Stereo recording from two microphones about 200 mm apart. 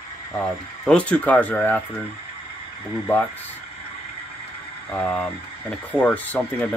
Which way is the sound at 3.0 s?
10° left (ahead or behind).